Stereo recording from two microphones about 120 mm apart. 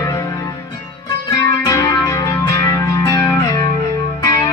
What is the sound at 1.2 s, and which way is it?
Music, 35° left (ahead or behind).